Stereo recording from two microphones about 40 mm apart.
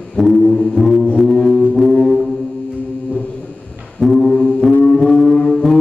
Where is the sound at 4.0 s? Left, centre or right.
Centre.